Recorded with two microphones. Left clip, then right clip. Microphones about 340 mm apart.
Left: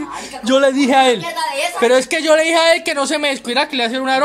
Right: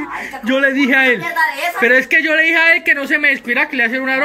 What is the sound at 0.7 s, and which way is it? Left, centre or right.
A woman's voice, centre.